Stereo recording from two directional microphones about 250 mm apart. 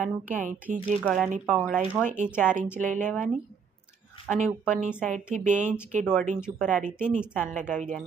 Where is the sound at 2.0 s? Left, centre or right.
Right.